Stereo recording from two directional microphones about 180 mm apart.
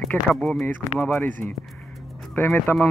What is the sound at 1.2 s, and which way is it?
Speech, 45° right (ahead or behind).